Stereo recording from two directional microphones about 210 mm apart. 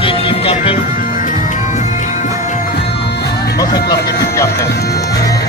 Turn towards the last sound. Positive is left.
turn(degrees=15)  # may be behind; listen again after turning